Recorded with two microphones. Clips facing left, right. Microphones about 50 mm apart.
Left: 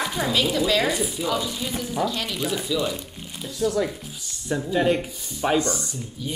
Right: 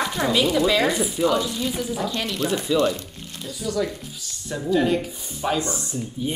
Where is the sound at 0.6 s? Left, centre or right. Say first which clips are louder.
Right 2 dB; centre.